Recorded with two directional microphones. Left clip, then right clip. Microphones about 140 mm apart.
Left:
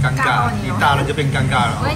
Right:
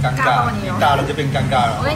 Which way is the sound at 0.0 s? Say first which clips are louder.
Right 1 dB; 30° right (ahead or behind).